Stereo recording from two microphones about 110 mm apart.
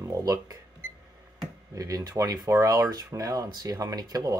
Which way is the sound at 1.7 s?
30° right (ahead or behind).